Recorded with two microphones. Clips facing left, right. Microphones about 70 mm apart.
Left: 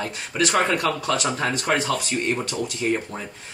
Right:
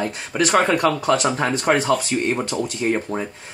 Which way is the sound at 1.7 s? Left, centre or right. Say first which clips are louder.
Right 6 dB; centre.